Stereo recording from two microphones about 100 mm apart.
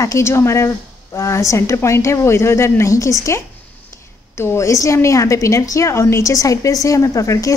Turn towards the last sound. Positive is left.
turn(degrees=35)  # may be behind; listen again after turning